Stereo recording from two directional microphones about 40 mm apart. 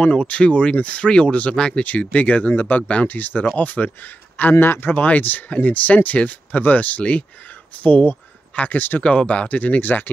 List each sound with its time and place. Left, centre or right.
0.0 s speech: left
4.6 s speech: left
4.9 s speech: left
8.6 s speech: left
9.0 s speech: left
9.8 s speech: left